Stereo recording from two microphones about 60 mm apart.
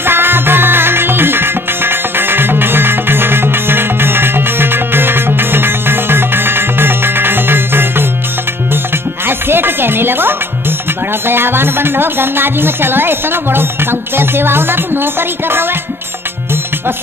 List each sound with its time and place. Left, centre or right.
0.0 s music: right
9.2 s music: right
11.2 s speech: right